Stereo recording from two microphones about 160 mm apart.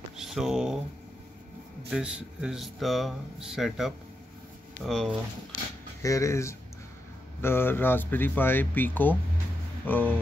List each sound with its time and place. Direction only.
0.2 s a sound: 5° right (ahead or behind)
1.9 s speech: 5° right (ahead or behind)
6.0 s speech: 20° left (ahead or behind)